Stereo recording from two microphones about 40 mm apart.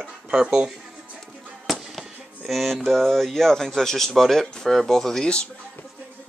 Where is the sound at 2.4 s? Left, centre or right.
Centre.